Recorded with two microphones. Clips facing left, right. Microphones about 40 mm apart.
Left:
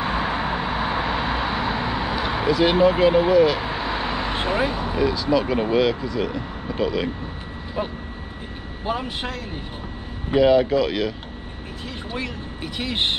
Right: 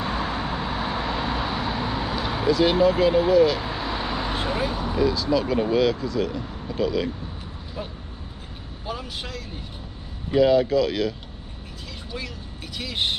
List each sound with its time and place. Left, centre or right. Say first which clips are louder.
0.0 s vehicle: left 3 dB; left
8.8 s speech: left 6 dB; left
12.1 s speech: left 5 dB; left